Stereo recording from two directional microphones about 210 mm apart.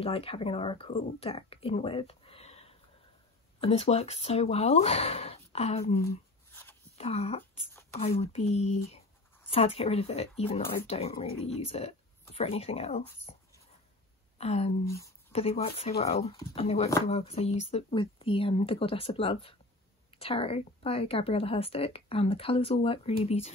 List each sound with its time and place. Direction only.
0.0 s a woman's voice: 25° left (ahead or behind)
6.0 s shuffling cards: 10° left (ahead or behind)
7.0 s a woman's voice: 30° left (ahead or behind)
14.4 s speech: 30° left (ahead or behind)
14.9 s speech: 15° left (ahead or behind)
15.3 s a woman's voice: 30° left (ahead or behind)